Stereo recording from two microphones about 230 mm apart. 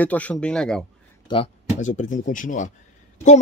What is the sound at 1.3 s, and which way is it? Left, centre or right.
Speech, left.